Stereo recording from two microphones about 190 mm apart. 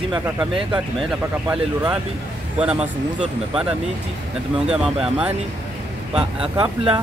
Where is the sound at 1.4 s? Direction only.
5° right (ahead or behind).